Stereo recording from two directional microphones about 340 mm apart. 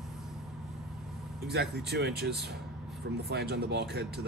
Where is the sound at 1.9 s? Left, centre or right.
Right.